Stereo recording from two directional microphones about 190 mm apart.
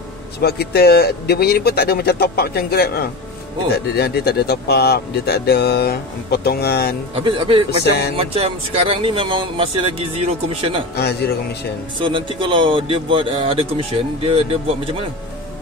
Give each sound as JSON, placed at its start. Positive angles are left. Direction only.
{"t": 0.4, "sound": "speech", "side_deg": 55}
{"t": 7.2, "sound": "speech", "side_deg": -25}
{"t": 11.0, "sound": "speech", "side_deg": 60}
{"t": 12.0, "sound": "speech", "side_deg": -25}